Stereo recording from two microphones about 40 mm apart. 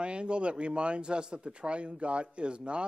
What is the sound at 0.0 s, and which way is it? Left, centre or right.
Speech, right.